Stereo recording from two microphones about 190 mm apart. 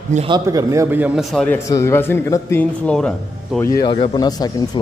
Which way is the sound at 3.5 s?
15° left (ahead or behind).